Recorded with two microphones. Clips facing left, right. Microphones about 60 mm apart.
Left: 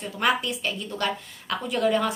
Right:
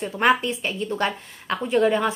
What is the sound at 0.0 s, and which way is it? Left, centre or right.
A woman's voice, right.